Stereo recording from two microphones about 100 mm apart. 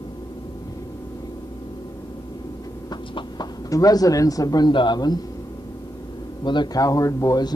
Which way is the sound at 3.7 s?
35° left (ahead or behind).